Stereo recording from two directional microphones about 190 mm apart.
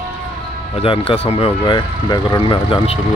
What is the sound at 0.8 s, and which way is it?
Speech, 30° left (ahead or behind).